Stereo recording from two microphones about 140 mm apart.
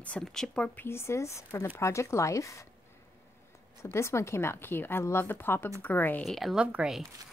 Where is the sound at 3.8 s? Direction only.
20° left (ahead or behind).